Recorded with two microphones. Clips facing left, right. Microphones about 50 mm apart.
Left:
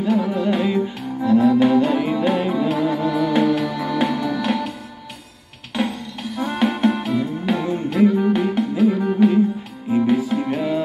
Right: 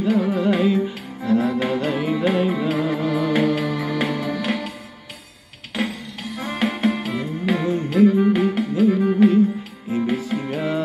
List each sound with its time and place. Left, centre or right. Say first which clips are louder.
0.0 s music: even; centre
6.3 s music: left 3 dB; centre